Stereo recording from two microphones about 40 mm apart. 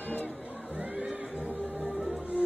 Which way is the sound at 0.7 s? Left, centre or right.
Right.